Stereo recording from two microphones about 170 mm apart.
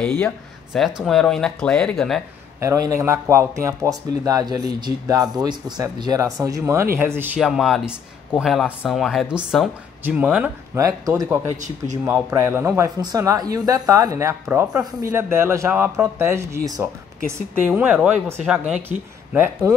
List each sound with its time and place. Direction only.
0.0 s speech: 5° left (ahead or behind)
2.6 s a man's voice: 20° right (ahead or behind)
11.5 s speech: 45° right (ahead or behind)
12.1 s a man's voice: 15° right (ahead or behind)